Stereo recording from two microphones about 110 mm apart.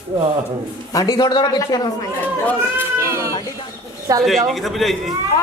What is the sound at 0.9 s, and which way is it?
Speech, 40° left (ahead or behind).